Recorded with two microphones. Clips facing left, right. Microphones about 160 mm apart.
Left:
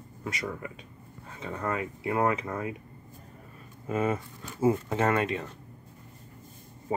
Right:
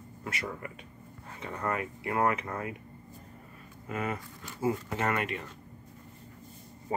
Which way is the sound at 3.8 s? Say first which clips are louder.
Left 6 dB; 25° left (ahead or behind).